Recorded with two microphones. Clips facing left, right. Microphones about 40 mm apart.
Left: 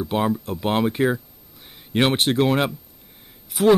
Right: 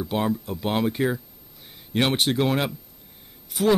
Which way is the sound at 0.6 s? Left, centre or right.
Centre.